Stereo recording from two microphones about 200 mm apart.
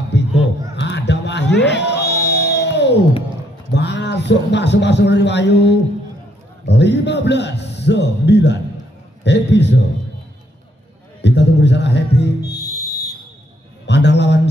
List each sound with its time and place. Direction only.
0.1 s a sound: 60° left (ahead or behind)
0.7 s music: 60° left (ahead or behind)
3.7 s a man's voice: 60° left (ahead or behind)
11.1 s a man's voice: 60° left (ahead or behind)
12.4 s music: 15° left (ahead or behind)
13.8 s a man's voice: 60° left (ahead or behind)